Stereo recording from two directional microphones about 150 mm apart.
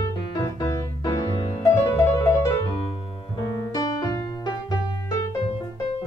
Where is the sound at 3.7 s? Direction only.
25° left (ahead or behind).